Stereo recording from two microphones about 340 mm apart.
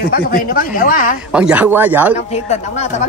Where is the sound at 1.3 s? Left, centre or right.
Centre.